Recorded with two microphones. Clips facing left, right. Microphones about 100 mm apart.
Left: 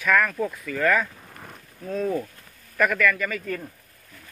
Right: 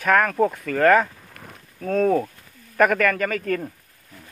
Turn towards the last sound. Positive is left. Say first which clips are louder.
# right 5 dB
turn(degrees=-60)  # may be behind; listen again after turning